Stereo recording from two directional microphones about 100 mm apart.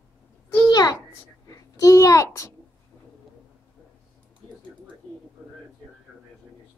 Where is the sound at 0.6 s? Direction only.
40° left (ahead or behind).